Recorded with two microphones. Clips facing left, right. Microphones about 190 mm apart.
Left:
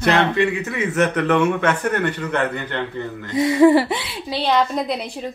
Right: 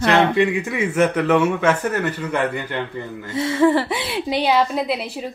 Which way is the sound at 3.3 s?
15° left (ahead or behind).